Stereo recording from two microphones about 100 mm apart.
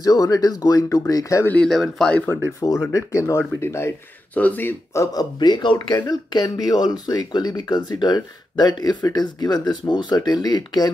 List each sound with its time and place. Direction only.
0.0 s speech: 40° left (ahead or behind)
1.4 s speech: 15° left (ahead or behind)
1.7 s speech: 5° left (ahead or behind)
2.6 s speech: 30° left (ahead or behind)
4.3 s speech: 15° left (ahead or behind)
5.0 s speech: 45° left (ahead or behind)